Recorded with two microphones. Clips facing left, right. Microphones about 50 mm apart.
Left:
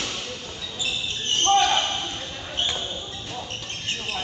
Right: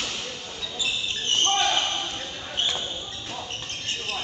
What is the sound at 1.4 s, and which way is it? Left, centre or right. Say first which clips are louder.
Basketball bounce: left 5 dB; centre.